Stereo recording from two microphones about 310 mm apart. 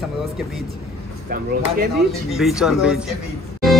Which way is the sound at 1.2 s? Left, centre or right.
Right.